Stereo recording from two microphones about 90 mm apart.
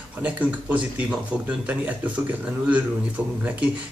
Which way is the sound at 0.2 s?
15° right (ahead or behind).